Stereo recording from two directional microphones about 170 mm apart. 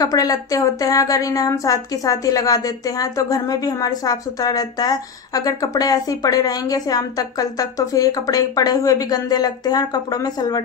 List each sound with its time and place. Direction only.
0.0 s a woman's voice: 20° left (ahead or behind)